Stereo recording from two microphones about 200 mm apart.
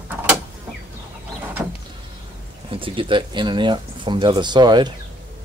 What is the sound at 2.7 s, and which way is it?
Speech, 25° right (ahead or behind).